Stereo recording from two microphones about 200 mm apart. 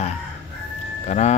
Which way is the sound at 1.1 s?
35° left (ahead or behind).